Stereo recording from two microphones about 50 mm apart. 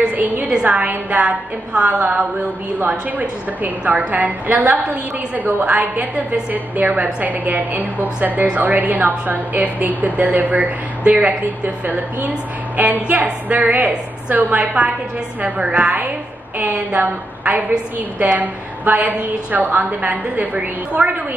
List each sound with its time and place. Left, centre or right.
0.1 s a sound: right
0.7 s a woman's voice: right
16.5 s a woman's voice: right